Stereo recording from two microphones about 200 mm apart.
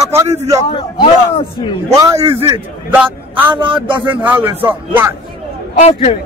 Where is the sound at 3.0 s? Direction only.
10° right (ahead or behind).